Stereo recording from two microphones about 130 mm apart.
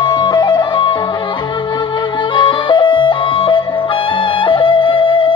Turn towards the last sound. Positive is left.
turn(degrees=40)  # may be behind; listen again after turning